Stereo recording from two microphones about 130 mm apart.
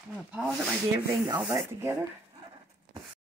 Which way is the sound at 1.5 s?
25° right (ahead or behind).